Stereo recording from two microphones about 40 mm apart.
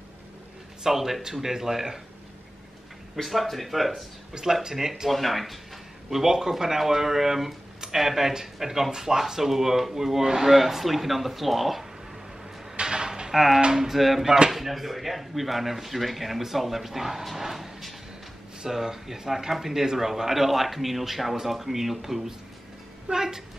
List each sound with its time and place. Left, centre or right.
0.8 s speech: centre
3.2 s speech: centre
4.3 s speech: centre
5.1 s speech: centre
12.7 s a sound: right
13.3 s speech: centre